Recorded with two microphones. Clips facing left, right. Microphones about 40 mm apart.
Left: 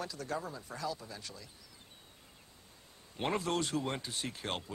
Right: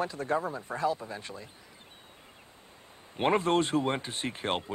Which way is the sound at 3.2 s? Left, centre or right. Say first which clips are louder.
Right 8 dB; right.